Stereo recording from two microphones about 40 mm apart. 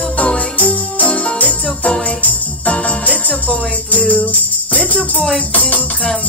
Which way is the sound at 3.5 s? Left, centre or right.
Left.